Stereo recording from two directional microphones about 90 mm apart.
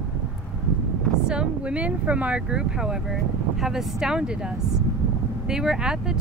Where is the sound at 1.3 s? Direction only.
10° right (ahead or behind).